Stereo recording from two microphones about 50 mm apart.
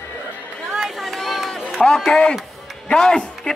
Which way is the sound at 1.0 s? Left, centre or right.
Centre.